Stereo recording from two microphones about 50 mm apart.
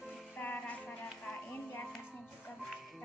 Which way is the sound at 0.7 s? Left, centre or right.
Left.